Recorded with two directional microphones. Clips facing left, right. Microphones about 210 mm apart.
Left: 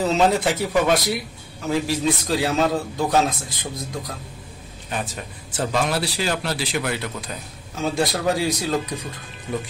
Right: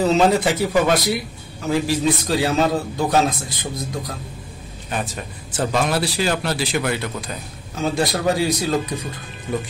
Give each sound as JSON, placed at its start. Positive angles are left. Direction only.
{"t": 0.0, "sound": "a man's voice", "side_deg": 0}
{"t": 5.1, "sound": "a man's voice", "side_deg": -45}
{"t": 7.7, "sound": "a man's voice", "side_deg": 0}